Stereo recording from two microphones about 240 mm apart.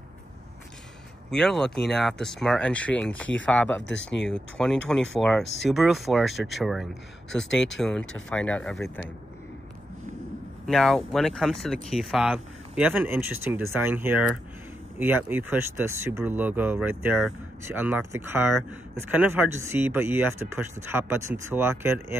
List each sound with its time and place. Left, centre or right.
1.3 s speech: centre
3.8 s speech: left
4.6 s speech: centre
10.7 s speech: centre